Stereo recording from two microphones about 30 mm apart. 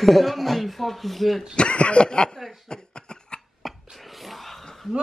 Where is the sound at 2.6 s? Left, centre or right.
Left.